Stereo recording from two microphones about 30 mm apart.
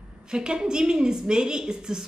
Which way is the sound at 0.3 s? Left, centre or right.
Right.